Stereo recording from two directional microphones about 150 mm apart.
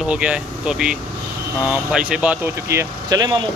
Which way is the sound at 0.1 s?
5° right (ahead or behind).